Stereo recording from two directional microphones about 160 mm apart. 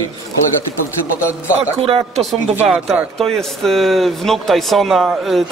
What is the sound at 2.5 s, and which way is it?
Speech, 10° right (ahead or behind).